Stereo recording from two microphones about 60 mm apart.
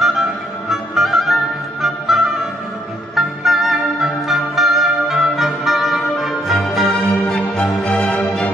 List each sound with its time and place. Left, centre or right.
0.0 s music: centre
7.8 s music: centre